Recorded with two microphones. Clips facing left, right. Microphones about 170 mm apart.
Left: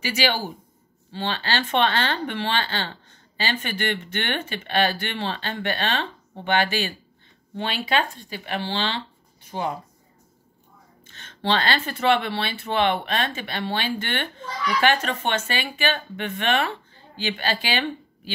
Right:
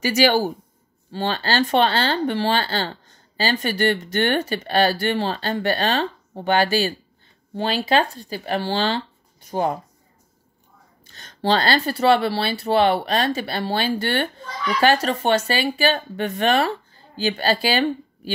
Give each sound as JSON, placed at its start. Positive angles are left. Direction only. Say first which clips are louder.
{"t": 0.0, "sound": "speech", "louder": "right 7 dB", "side_deg": -45}
{"t": 11.1, "sound": "speech", "louder": "right 4 dB", "side_deg": -40}